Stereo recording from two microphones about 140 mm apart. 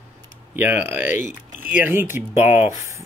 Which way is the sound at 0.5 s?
15° right (ahead or behind).